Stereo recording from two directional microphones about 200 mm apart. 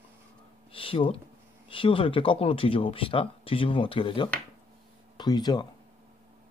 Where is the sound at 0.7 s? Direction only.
25° left (ahead or behind).